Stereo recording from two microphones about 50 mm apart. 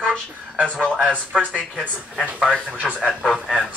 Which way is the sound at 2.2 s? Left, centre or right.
Centre.